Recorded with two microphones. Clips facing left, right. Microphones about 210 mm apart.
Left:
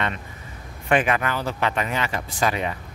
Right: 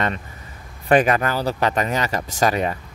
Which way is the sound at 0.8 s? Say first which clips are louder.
Right 4 dB; 40° right (ahead or behind).